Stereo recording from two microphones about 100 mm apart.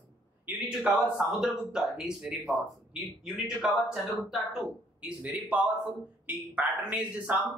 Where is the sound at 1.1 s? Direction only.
5° right (ahead or behind).